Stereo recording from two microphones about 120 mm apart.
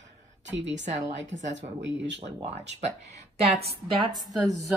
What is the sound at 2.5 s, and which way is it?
Speech, 70° right (ahead or behind).